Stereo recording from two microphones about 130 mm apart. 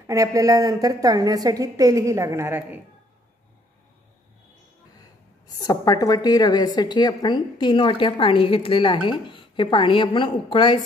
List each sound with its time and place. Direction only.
0.0 s a woman's voice: 25° right (ahead or behind)
5.6 s a woman's voice: 30° left (ahead or behind)